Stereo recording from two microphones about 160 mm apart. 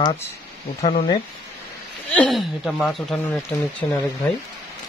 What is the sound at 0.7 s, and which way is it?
Speech, 40° left (ahead or behind).